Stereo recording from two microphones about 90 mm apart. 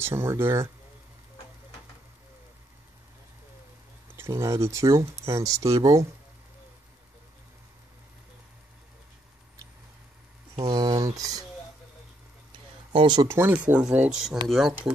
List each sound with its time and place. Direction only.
0.0 s speech: 30° right (ahead or behind)
4.2 s speech: 35° right (ahead or behind)
10.5 s speech: 50° right (ahead or behind)
12.9 s speech: 65° right (ahead or behind)
13.3 s speech: 25° right (ahead or behind)
13.7 s speech: 15° right (ahead or behind)